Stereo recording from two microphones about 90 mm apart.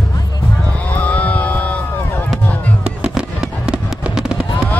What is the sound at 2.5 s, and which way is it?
Fireworks, 15° left (ahead or behind).